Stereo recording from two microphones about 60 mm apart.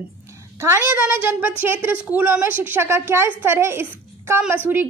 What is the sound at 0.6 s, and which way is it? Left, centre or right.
A woman's voice, right.